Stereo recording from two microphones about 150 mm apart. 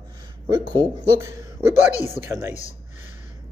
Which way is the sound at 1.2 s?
15° right (ahead or behind).